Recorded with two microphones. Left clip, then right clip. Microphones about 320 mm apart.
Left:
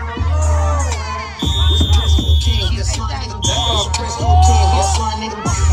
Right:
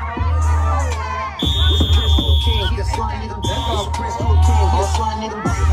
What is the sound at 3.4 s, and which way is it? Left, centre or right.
Music, right.